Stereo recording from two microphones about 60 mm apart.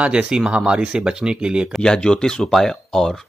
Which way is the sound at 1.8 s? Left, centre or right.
Centre.